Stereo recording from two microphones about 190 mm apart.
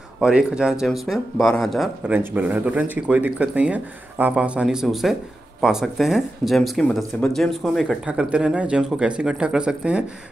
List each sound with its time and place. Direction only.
0.2 s speech: 5° right (ahead or behind)